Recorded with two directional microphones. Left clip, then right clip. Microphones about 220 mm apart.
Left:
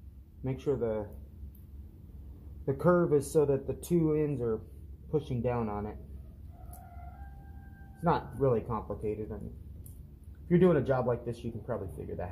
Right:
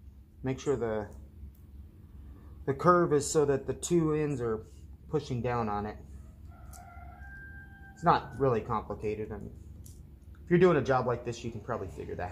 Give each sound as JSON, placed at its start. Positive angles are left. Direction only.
{"t": 0.4, "sound": "speech", "side_deg": -25}
{"t": 2.6, "sound": "speech", "side_deg": -25}
{"t": 8.0, "sound": "speech", "side_deg": -20}
{"t": 10.5, "sound": "speech", "side_deg": -20}